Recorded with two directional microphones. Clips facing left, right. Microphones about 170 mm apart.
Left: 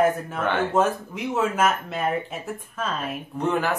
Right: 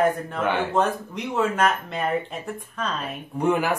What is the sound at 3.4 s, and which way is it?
Speech, 10° right (ahead or behind).